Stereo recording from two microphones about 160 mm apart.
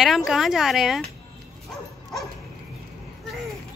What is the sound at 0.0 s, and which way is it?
Speech, centre (ahead or behind).